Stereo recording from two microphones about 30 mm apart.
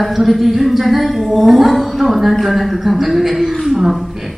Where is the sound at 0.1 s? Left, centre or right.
Centre.